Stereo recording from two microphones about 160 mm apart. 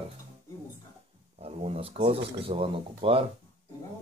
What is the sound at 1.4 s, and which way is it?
Speech, 40° right (ahead or behind).